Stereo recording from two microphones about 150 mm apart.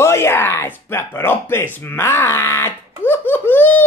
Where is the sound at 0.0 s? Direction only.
15° left (ahead or behind).